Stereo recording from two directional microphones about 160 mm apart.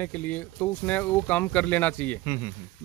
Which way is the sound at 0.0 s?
10° left (ahead or behind).